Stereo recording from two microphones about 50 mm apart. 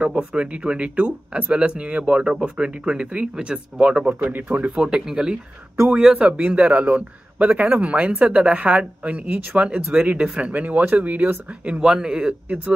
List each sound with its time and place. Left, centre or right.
0.0 s speech: right
4.6 s speech: centre
6.1 s speech: right
10.5 s speech: right
11.7 s speech: centre